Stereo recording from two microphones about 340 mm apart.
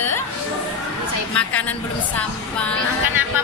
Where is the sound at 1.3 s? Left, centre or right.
Centre.